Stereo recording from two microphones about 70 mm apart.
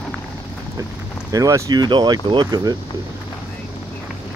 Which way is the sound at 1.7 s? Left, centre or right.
Right.